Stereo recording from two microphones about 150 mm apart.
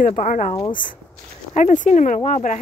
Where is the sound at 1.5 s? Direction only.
55° left (ahead or behind).